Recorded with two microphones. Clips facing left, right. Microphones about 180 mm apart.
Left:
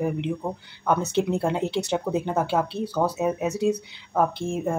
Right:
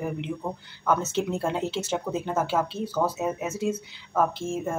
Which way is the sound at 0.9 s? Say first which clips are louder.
Left 2 dB; 15° left (ahead or behind).